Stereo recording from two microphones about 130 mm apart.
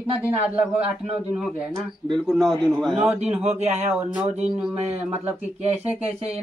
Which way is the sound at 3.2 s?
60° right (ahead or behind).